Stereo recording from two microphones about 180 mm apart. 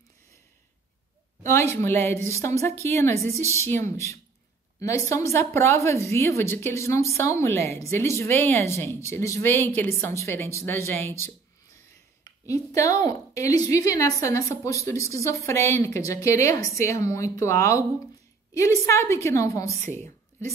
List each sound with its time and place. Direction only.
1.4 s a woman's voice: 15° left (ahead or behind)